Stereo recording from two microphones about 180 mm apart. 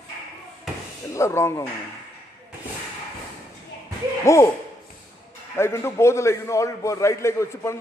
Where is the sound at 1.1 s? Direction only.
15° left (ahead or behind).